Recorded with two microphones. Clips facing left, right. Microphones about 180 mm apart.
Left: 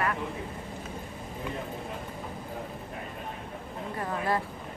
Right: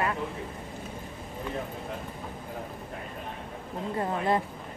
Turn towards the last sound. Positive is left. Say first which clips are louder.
# right 3 dB
turn(degrees=-25)  # may be behind; listen again after turning